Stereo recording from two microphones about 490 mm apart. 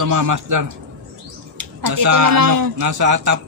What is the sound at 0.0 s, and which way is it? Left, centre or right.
Speech, right.